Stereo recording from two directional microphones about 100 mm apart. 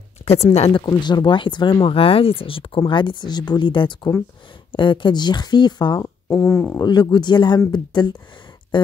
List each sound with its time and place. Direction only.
0.4 s speech: 90° left
0.8 s speech: 45° left (ahead or behind); by 2.8 s 65° left (ahead or behind)
2.8 s speech: 50° left (ahead or behind)
6.0 s speech: 25° left (ahead or behind)
6.8 s speech: 45° left (ahead or behind)